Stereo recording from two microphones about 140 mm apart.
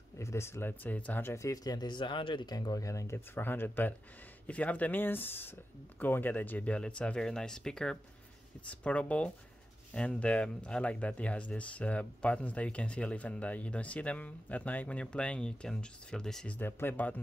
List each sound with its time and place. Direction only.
0.2 s speech: 20° left (ahead or behind)